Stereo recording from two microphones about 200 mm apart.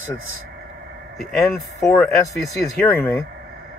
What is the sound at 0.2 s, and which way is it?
Speech, 90° right.